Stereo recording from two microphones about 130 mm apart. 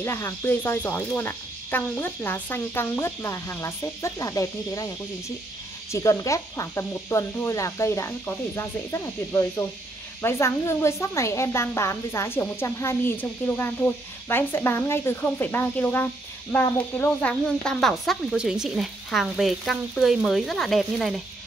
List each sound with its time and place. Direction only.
0.0 s speech: 20° left (ahead or behind); by 21.1 s centre (ahead or behind)